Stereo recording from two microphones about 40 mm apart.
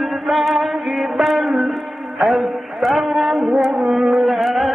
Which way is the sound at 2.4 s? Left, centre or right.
Centre.